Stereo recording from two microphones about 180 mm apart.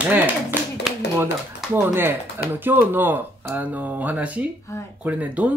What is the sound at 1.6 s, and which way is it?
Speech, 10° right (ahead or behind).